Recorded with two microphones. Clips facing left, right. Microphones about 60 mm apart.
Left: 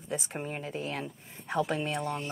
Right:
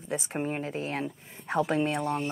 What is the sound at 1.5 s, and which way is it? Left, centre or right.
Speech, right.